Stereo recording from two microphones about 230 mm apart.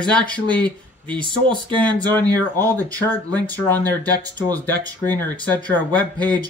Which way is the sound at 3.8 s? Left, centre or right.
Centre.